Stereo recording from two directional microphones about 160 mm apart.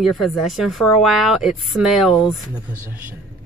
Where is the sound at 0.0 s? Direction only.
Centre (ahead or behind).